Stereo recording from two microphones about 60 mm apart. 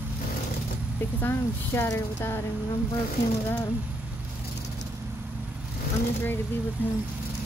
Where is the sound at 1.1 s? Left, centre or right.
Left.